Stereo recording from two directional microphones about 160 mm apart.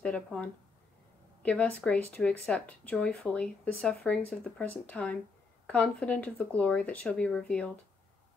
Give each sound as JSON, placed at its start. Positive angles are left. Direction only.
{"t": 0.0, "sound": "speech", "side_deg": 5}